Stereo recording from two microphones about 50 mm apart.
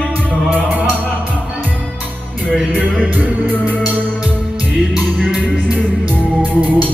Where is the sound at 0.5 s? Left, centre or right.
Right.